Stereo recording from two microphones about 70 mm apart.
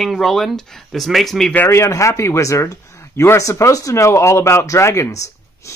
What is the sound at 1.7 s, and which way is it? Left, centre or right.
Speech, left.